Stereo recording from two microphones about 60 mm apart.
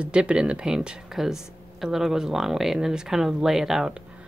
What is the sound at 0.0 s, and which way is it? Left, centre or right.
Speech, centre.